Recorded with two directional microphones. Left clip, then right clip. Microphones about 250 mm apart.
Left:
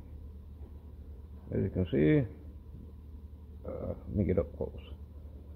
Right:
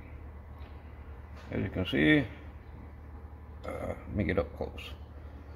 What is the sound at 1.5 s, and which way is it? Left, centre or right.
Speech, left.